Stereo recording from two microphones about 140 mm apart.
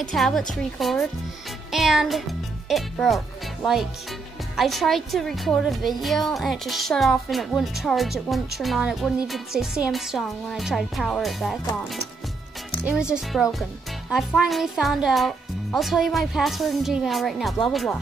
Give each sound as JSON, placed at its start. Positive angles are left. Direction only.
{"t": 0.0, "sound": "a woman's voice", "side_deg": 0}
{"t": 4.6, "sound": "a woman's voice", "side_deg": 0}
{"t": 12.8, "sound": "a woman's voice", "side_deg": -5}